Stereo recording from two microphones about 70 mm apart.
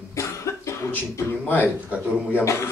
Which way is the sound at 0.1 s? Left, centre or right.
Left.